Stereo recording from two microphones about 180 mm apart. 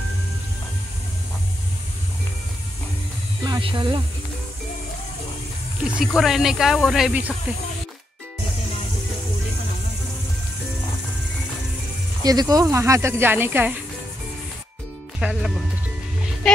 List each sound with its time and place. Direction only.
3.4 s speech: 25° right (ahead or behind)
5.9 s speech: 5° right (ahead or behind)
12.2 s speech: 20° right (ahead or behind)
15.1 s speech: 5° right (ahead or behind)